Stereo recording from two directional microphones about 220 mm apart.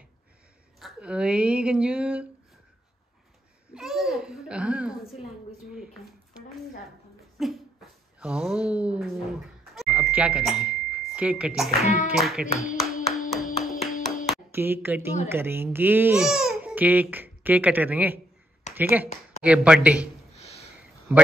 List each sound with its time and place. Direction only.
0.7 s speech: 5° right (ahead or behind)
3.7 s a sound: centre (ahead or behind)
7.3 s speech: centre (ahead or behind)
12.7 s clapping: centre (ahead or behind)
14.5 s speech: 10° right (ahead or behind)
18.7 s a sound: 30° left (ahead or behind)
19.4 s speech: 5° right (ahead or behind)
20.3 s a sound: 30° left (ahead or behind)
21.1 s speech: 10° right (ahead or behind)